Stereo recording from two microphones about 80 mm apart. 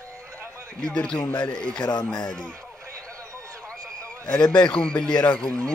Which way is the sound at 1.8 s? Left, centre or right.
Left.